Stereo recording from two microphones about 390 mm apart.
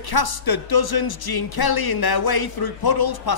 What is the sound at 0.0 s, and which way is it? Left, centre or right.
A man's voice, left.